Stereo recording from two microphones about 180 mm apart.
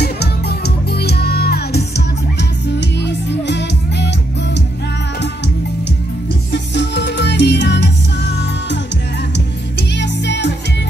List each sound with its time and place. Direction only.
0.0 s music: 65° left (ahead or behind)
6.5 s music: 70° left (ahead or behind)
9.9 s music: 75° left (ahead or behind)